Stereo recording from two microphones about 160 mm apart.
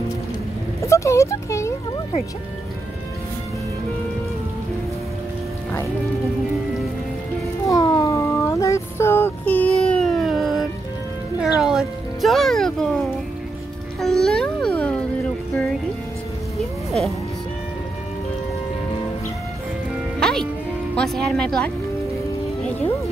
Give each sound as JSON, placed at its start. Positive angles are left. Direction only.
{"t": 0.7, "sound": "a sound", "side_deg": 20}
{"t": 7.6, "sound": "a sound", "side_deg": 20}
{"t": 9.8, "sound": "cat", "side_deg": 5}
{"t": 11.4, "sound": "music", "side_deg": -5}
{"t": 16.5, "sound": "music", "side_deg": 0}
{"t": 20.2, "sound": "music", "side_deg": 5}
{"t": 20.9, "sound": "speech", "side_deg": 5}